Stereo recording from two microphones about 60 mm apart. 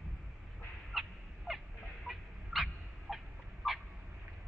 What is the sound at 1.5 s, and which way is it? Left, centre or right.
Fowl, centre.